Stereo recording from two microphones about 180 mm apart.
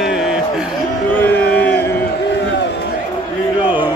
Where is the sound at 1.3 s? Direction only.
65° left (ahead or behind).